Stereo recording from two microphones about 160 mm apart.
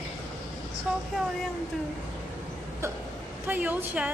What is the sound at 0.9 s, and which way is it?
Speech, 5° right (ahead or behind).